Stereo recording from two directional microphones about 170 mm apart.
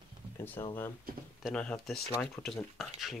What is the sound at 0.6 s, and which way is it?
Speech, 15° left (ahead or behind).